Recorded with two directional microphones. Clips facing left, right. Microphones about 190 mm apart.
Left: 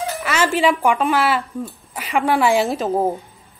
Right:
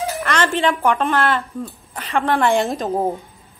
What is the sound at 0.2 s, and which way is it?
Speech, 5° left (ahead or behind).